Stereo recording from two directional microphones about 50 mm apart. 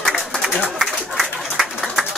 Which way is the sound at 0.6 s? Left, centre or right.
Centre.